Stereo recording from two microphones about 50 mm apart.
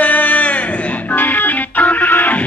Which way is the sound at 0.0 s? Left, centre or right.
Left.